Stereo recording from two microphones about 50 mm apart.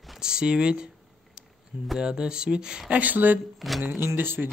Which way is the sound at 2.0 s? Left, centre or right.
Centre.